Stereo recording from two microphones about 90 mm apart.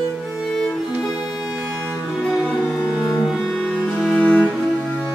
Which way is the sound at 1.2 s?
20° right (ahead or behind).